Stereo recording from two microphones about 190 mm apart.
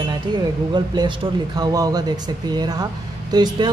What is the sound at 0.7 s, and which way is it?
Speech, 25° right (ahead or behind).